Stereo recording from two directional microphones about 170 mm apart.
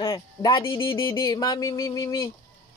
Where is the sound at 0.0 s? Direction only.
30° left (ahead or behind).